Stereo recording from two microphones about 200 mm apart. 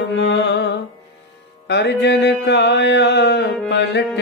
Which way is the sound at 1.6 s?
60° left (ahead or behind).